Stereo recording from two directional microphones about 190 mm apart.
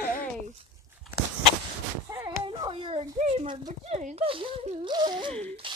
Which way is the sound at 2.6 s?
30° right (ahead or behind).